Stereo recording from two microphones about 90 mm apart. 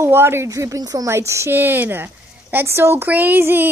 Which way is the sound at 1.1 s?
30° right (ahead or behind).